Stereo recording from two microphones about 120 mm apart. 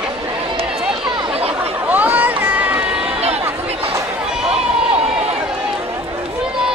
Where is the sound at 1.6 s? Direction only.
15° right (ahead or behind).